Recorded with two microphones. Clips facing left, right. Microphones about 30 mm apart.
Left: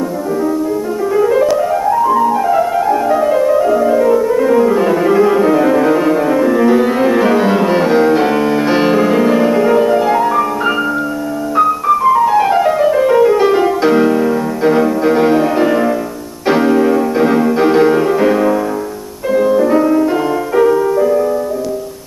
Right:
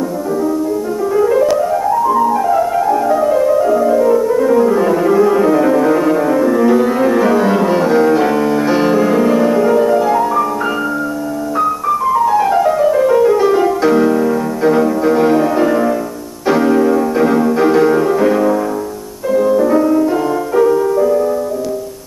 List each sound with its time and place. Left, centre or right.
1.1 s music: centre